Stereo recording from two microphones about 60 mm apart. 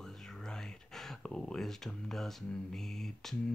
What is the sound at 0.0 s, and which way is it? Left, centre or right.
Speech, centre.